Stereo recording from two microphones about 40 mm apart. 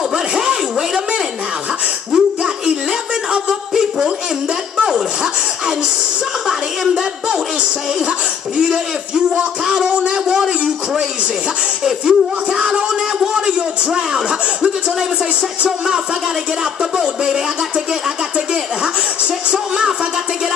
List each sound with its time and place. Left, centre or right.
0.4 s zipper: centre
2.1 s tambourine: centre
4.8 s a sound: centre
9.7 s a sound: centre
11.8 s music: centre
13.9 s chuckle: centre
16.9 s speech: centre